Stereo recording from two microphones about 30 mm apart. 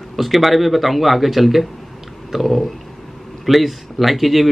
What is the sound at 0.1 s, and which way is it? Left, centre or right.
Speech, centre.